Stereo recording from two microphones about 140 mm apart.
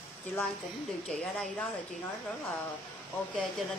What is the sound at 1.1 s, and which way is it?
Speech, 5° left (ahead or behind).